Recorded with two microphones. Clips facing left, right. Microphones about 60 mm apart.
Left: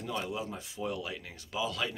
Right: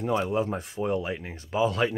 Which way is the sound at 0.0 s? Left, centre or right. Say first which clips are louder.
Right 10 dB; right.